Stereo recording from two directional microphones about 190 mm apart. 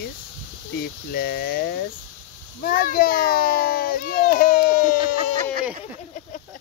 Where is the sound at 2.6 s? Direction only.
50° left (ahead or behind).